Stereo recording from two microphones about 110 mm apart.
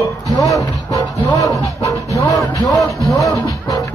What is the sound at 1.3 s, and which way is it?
Music, 30° left (ahead or behind).